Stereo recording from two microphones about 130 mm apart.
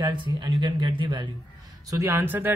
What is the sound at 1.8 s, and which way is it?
Speech, 20° right (ahead or behind).